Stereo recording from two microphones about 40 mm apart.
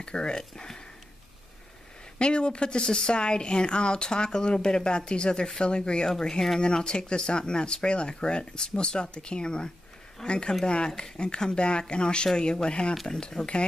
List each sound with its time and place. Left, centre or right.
0.0 s speech: left
2.1 s speech: left
6.0 s speech: centre
6.6 s speech: left